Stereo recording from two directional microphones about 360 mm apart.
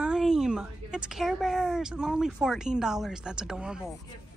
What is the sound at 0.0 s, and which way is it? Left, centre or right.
A woman's voice, centre.